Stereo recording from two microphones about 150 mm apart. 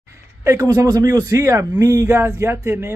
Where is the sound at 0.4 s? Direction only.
20° right (ahead or behind).